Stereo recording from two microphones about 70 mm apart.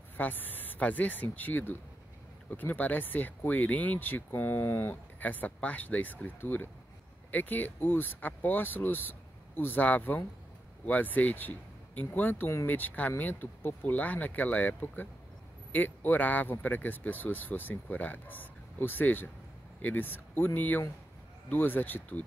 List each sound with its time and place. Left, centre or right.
0.2 s speech: left